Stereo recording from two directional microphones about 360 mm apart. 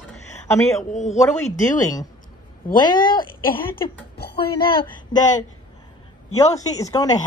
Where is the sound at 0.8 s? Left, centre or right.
Centre.